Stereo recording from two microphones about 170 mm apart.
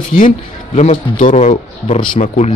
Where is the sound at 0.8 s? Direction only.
35° left (ahead or behind).